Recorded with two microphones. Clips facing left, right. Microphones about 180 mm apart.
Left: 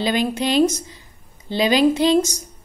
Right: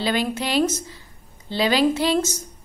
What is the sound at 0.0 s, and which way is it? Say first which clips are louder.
A woman's voice: left 3 dB; 15° left (ahead or behind).